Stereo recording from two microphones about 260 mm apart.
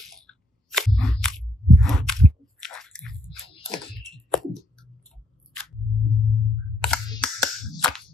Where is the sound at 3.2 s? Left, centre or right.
Left.